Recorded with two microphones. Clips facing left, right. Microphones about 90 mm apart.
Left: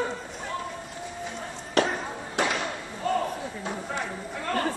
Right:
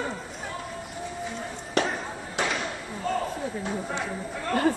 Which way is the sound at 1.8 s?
Centre (ahead or behind).